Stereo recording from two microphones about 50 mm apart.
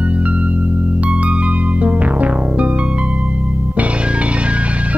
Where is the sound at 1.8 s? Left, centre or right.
Right.